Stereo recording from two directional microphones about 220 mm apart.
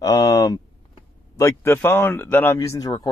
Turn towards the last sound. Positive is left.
turn(degrees=15)  # may be behind; listen again after turning